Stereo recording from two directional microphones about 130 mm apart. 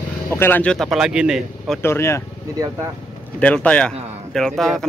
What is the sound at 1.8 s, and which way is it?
Speech, 20° left (ahead or behind).